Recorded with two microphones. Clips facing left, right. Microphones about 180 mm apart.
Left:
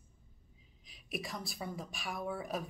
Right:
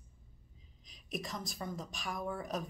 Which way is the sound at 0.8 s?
5° left (ahead or behind).